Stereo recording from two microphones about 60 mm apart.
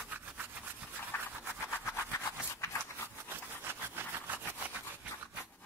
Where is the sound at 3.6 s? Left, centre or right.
Right.